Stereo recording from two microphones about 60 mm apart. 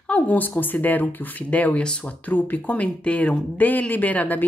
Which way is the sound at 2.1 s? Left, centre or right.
Left.